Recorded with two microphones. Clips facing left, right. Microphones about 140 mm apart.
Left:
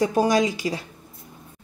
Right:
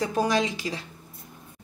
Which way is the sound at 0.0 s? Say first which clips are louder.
Left 5 dB; 40° left (ahead or behind).